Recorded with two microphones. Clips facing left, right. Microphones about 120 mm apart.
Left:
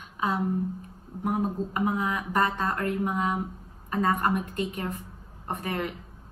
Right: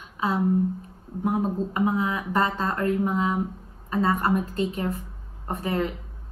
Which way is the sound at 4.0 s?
30° right (ahead or behind).